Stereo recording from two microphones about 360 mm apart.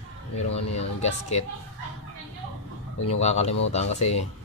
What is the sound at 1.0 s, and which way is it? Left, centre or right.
Speech, centre.